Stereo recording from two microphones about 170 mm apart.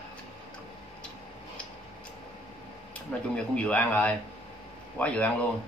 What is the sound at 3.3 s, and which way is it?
Speech, 10° left (ahead or behind).